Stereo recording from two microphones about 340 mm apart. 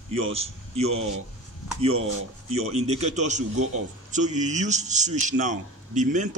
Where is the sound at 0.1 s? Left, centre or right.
Centre.